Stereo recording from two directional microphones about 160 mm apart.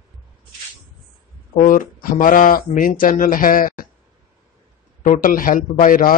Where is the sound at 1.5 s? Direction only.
55° left (ahead or behind).